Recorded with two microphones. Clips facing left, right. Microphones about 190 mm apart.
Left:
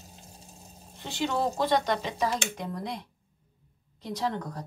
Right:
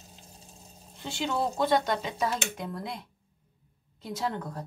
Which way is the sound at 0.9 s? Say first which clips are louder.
Left 1 dB; centre (ahead or behind).